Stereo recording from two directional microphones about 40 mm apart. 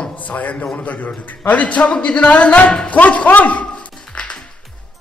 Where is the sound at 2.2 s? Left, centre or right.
Left.